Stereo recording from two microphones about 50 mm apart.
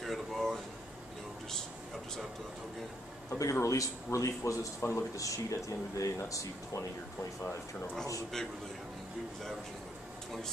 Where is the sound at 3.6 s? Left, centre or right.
Left.